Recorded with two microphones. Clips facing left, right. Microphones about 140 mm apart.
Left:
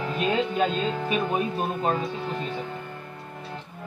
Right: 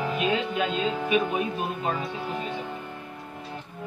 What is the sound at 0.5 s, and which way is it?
Speech, 35° left (ahead or behind).